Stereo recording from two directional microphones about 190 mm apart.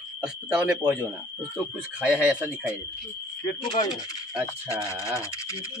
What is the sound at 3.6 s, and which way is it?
Speech, 25° left (ahead or behind).